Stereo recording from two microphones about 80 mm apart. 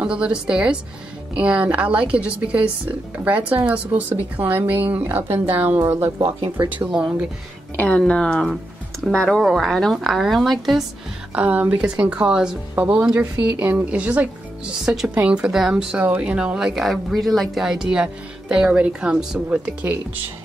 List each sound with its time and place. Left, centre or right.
0.0 s speech: centre; by 6.8 s right
6.8 s speech: centre
7.7 s speech: centre
11.3 s speech: centre
17.6 s speech: centre